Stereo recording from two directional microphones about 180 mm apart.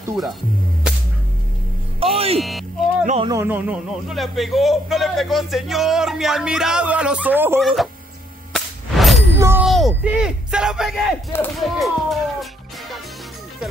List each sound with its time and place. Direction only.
0.1 s speech: centre (ahead or behind)
2.1 s speech: 35° right (ahead or behind)
2.4 s music: centre (ahead or behind)
3.3 s speech: 15° right (ahead or behind)
7.6 s speech: centre (ahead or behind)
8.5 s a sound: centre (ahead or behind)
9.4 s a sound: 15° right (ahead or behind)
9.7 s speech: centre (ahead or behind)